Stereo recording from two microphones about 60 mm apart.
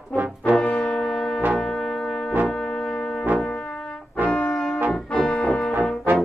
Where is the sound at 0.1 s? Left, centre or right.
Right.